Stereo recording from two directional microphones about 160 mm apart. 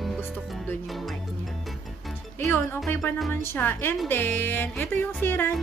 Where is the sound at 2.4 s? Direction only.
15° left (ahead or behind).